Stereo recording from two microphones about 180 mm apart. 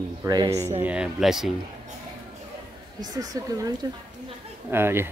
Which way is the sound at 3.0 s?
20° right (ahead or behind).